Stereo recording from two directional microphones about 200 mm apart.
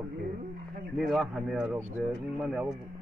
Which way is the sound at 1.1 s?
5° right (ahead or behind).